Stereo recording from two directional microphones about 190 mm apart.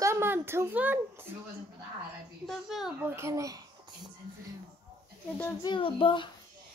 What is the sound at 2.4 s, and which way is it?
Speech, centre (ahead or behind).